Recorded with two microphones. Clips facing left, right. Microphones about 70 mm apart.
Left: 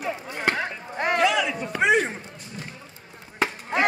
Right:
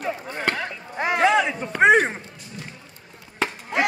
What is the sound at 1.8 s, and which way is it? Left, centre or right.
Speech, right.